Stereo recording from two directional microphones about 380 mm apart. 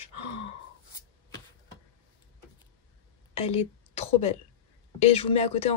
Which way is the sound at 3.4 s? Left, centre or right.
Centre.